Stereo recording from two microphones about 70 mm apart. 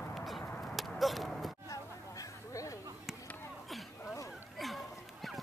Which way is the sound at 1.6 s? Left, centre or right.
Left.